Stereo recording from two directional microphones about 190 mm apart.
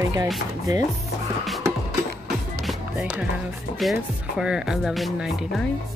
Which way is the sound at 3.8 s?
Centre (ahead or behind).